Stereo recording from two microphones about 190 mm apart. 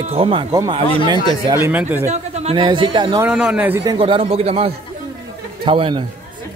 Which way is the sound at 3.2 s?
5° right (ahead or behind).